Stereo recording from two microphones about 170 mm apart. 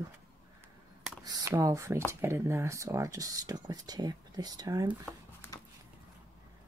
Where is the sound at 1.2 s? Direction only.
20° right (ahead or behind).